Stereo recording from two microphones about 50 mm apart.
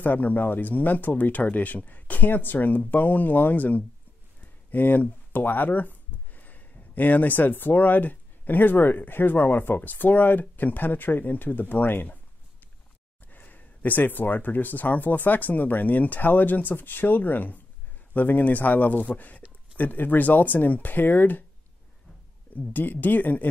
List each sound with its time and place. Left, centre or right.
0.0 s speech: left
13.3 s speech: left
22.7 s speech: left